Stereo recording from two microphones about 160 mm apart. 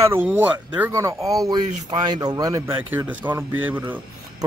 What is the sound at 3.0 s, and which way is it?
Speech, 10° right (ahead or behind).